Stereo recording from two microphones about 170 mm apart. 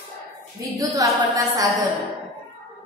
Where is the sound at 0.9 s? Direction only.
20° right (ahead or behind).